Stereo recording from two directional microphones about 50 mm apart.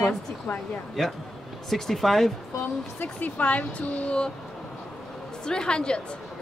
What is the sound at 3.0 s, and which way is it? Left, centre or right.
Speech, left.